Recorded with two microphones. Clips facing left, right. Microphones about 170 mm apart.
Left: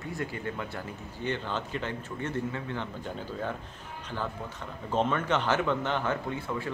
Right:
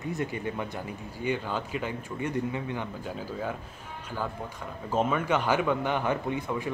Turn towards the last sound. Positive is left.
turn(degrees=-15)  # may be behind; listen again after turning